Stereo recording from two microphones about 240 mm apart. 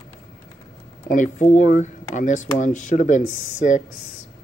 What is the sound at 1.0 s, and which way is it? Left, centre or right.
Speech, left.